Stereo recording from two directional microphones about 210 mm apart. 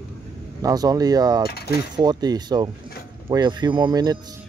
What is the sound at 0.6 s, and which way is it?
Speech, 15° right (ahead or behind).